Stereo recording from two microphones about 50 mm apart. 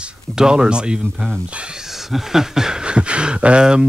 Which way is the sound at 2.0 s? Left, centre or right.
Centre.